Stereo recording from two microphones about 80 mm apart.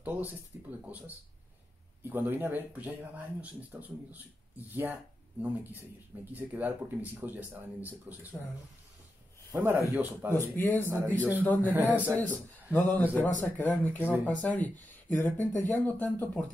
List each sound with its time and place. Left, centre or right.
0.0 s speech: right
9.6 s speech: right
10.3 s speech: left
11.7 s speech: right
12.2 s speech: left